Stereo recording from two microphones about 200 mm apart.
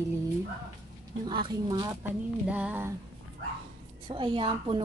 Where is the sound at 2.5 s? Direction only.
10° right (ahead or behind).